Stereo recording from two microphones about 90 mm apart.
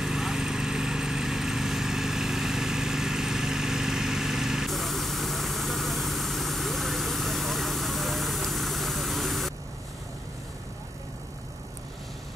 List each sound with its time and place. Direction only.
0.0 s vehicle: 5° right (ahead or behind)